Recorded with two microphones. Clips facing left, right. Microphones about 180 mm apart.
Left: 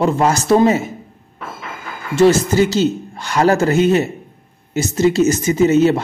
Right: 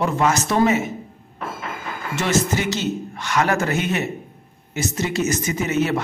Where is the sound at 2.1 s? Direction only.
35° left (ahead or behind).